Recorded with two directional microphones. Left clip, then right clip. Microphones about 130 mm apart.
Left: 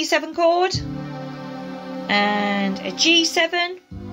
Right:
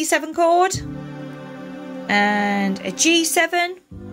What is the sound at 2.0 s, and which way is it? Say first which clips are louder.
Speech: right 1 dB; 50° right (ahead or behind).